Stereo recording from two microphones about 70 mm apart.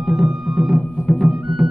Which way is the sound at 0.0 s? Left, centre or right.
Centre.